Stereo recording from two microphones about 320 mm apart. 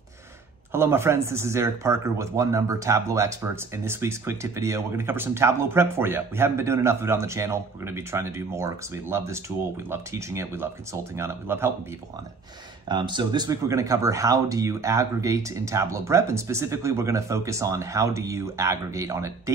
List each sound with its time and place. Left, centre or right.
0.7 s speech: centre
12.8 s speech: centre